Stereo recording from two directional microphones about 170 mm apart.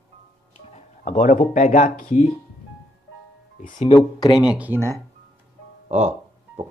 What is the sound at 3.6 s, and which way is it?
Speech, 50° left (ahead or behind).